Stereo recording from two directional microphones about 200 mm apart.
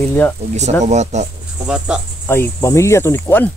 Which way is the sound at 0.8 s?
35° right (ahead or behind).